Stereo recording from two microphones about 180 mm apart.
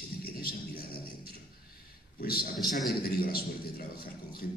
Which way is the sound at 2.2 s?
55° left (ahead or behind).